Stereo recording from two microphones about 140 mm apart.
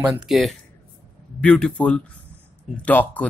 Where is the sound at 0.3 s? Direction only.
Centre (ahead or behind).